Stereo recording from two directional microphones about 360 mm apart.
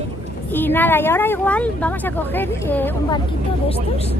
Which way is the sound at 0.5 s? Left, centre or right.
Centre.